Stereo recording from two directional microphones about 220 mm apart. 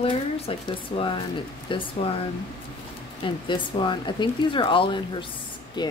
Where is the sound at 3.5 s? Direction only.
20° left (ahead or behind).